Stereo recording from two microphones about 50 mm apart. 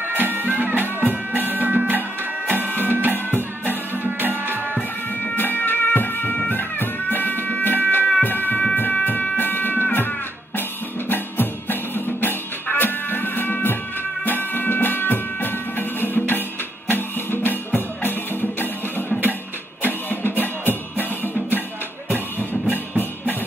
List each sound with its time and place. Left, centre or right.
0.1 s music: right
4.2 s music: right
5.3 s music: left
12.2 s music: left
22.5 s music: left